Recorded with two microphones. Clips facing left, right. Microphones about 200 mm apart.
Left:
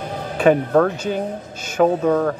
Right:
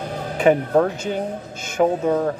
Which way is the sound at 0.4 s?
20° right (ahead or behind).